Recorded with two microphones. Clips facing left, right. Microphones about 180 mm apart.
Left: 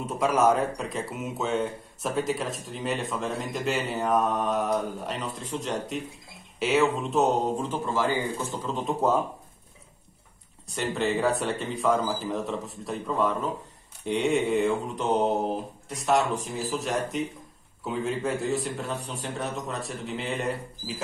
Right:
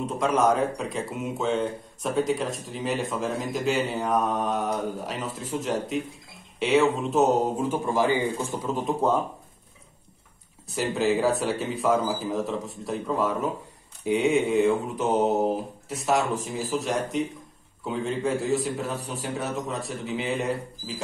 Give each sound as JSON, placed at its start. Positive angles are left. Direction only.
{"t": 0.0, "sound": "a man's voice", "side_deg": 5}
{"t": 10.7, "sound": "speech", "side_deg": 0}